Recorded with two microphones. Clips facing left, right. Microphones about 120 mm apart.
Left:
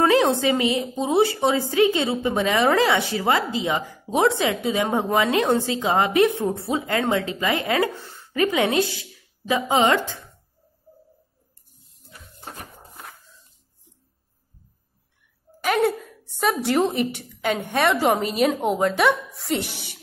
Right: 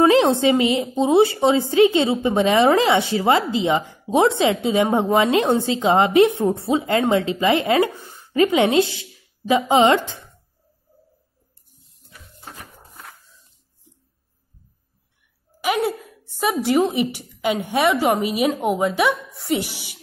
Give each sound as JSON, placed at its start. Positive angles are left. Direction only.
{"t": 0.0, "sound": "a woman's voice", "side_deg": -25}
{"t": 15.6, "sound": "a sound", "side_deg": 0}
{"t": 16.6, "sound": "a woman's voice", "side_deg": -5}
{"t": 17.8, "sound": "a woman's voice", "side_deg": 0}